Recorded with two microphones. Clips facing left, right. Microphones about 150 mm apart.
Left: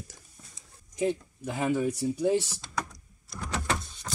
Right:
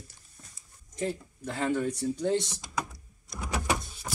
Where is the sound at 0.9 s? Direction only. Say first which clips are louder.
Left 4 dB; 10° left (ahead or behind).